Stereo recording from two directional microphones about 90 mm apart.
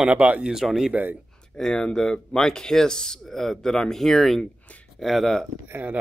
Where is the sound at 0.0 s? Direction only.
15° right (ahead or behind).